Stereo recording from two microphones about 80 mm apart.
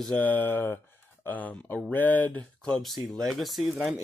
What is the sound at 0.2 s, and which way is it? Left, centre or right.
Speech, left.